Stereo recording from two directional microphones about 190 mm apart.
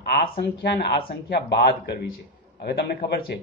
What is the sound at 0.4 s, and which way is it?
Speech, 60° left (ahead or behind).